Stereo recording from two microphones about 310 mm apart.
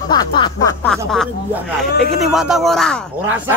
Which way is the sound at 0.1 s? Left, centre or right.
Centre.